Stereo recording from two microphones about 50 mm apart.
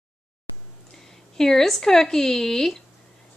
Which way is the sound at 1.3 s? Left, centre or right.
Centre.